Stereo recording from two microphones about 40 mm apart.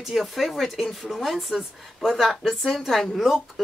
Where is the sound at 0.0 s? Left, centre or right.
Centre.